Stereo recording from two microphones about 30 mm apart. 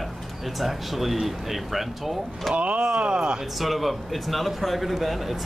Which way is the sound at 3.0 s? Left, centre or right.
Right.